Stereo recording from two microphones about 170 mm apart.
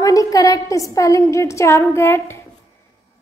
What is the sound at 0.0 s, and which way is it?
A woman's voice, 20° left (ahead or behind).